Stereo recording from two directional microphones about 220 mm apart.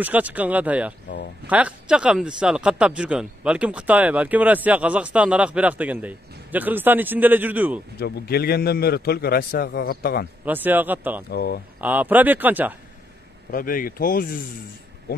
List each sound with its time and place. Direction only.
0.0 s speech: 5° right (ahead or behind)
8.0 s a man's voice: 45° left (ahead or behind)
10.4 s speech: 10° right (ahead or behind)
11.2 s a man's voice: 45° left (ahead or behind)
11.8 s speech: 5° right (ahead or behind)
13.5 s speech: 40° left (ahead or behind)